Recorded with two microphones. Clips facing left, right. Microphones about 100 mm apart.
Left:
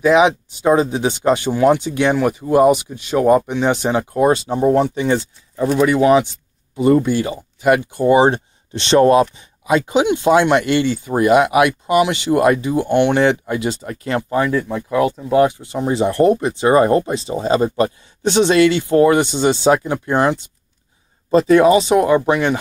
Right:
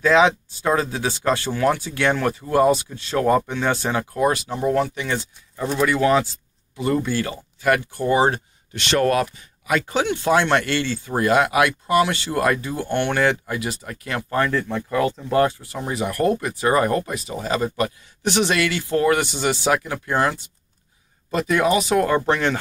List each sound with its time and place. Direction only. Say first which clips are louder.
0.0 s speech: left 3 dB; 15° left (ahead or behind)
14.3 s speech: left 2 dB; 10° left (ahead or behind)